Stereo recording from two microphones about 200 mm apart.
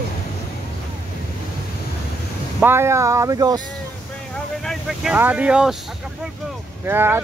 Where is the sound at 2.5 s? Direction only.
10° right (ahead or behind).